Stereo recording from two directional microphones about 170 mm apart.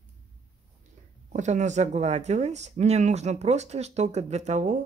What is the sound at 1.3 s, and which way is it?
Speech, 45° right (ahead or behind).